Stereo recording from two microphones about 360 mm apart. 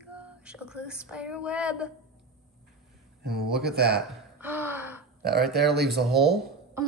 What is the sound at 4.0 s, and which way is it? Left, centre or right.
Gasp, centre.